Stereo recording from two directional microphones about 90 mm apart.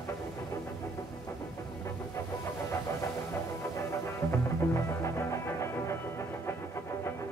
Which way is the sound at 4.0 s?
30° left (ahead or behind).